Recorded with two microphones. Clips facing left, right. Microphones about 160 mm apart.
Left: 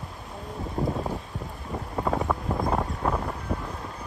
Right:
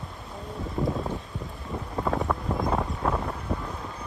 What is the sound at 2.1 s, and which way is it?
Wind, centre (ahead or behind).